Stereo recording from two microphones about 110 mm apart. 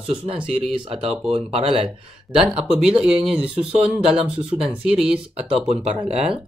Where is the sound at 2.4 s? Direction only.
5° right (ahead or behind).